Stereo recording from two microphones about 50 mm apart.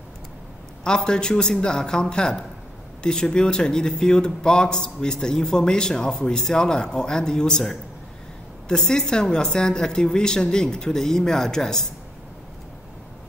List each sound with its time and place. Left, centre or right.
0.8 s speech: centre